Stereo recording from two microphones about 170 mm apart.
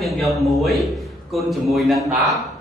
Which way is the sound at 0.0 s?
Centre (ahead or behind).